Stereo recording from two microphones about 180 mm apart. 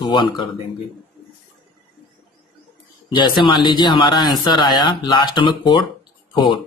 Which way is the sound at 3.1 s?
25° left (ahead or behind).